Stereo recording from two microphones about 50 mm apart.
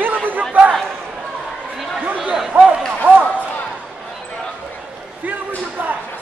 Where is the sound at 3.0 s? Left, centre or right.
Right.